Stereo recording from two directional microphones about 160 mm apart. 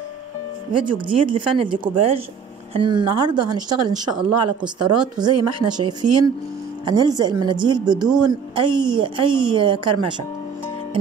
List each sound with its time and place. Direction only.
0.7 s a woman's voice: 30° right (ahead or behind)